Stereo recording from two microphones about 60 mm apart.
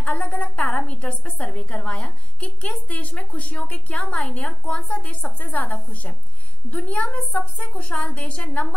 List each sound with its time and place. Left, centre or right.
0.0 s a woman's voice: left